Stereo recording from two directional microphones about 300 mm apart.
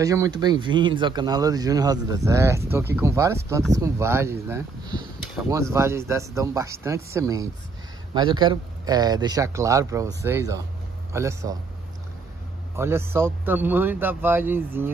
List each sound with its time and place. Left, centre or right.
0.0 s speech: centre
12.7 s speech: centre